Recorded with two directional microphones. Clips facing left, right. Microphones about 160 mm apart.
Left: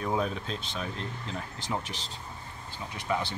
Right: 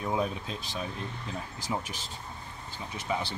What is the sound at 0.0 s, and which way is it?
Speech, 5° right (ahead or behind).